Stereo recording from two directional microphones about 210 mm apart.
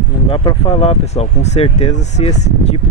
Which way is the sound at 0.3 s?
25° left (ahead or behind).